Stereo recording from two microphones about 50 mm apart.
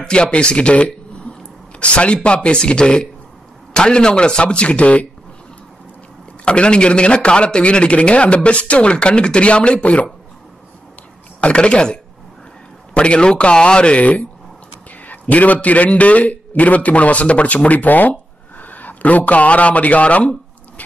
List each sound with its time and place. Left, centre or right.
0.0 s a man's voice: centre
1.3 s a sound: left
1.8 s a man's voice: left
6.4 s a man's voice: centre
11.4 s a man's voice: centre